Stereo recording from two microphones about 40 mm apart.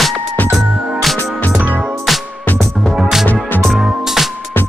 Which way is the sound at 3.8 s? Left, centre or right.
Centre.